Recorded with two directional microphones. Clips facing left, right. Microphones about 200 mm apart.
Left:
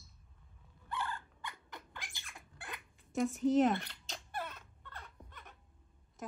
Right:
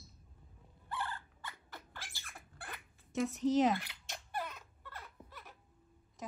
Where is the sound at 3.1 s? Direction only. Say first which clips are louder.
Left 1 dB; centre (ahead or behind).